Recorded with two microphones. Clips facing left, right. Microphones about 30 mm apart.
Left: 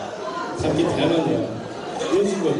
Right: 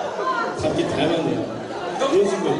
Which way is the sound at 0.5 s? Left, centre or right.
Centre.